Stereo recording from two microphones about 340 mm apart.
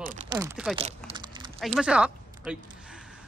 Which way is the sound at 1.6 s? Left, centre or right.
Centre.